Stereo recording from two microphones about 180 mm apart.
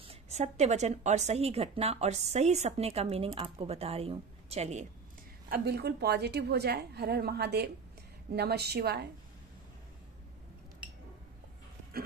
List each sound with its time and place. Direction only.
0.1 s a woman's voice: 40° right (ahead or behind)
5.5 s a woman's voice: 60° right (ahead or behind)